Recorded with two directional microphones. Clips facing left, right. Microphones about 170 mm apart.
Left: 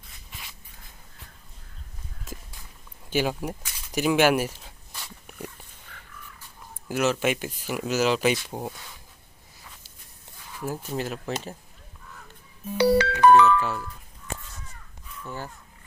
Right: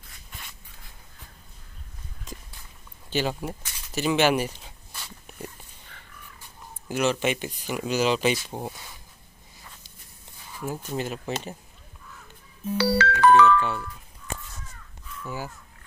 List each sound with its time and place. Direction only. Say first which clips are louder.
2.3 s walk: left 1 dB; 5° left (ahead or behind)
3.1 s a sound: left 1 dB; 10° left (ahead or behind)
6.9 s speech: even; 5° left (ahead or behind)
10.6 s speech: even; 5° left (ahead or behind)
12.7 s music: left 3 dB; 15° left (ahead or behind)
13.6 s speech: right 1 dB; 5° left (ahead or behind)
15.2 s speech: right 2 dB; 5° right (ahead or behind)